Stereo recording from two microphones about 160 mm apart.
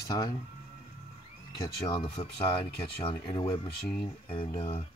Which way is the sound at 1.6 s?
25° left (ahead or behind).